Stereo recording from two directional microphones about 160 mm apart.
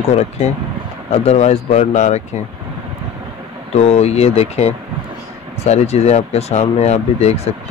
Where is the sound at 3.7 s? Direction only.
45° left (ahead or behind).